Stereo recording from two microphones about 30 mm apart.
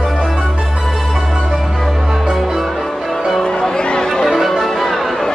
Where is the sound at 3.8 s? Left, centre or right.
Left.